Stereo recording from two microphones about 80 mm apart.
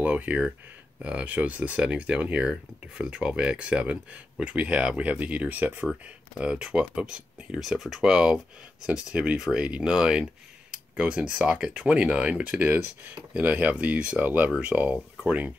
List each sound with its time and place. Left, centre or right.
0.0 s speech: centre